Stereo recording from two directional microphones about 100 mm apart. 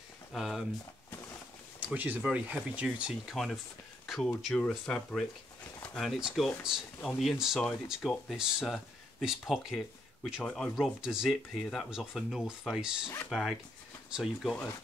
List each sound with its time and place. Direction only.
0.3 s speech: centre (ahead or behind)
1.8 s speech: 15° right (ahead or behind); by 8.4 s 5° left (ahead or behind)
8.4 s speech: 5° right (ahead or behind)
10.8 s speech: 5° right (ahead or behind)